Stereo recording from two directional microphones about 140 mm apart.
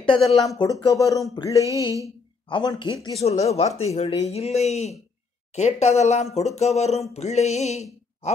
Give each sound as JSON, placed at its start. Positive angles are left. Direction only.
{"t": 0.2, "sound": "speech", "side_deg": 0}
{"t": 0.6, "sound": "speech", "side_deg": 30}
{"t": 3.2, "sound": "a sound", "side_deg": 50}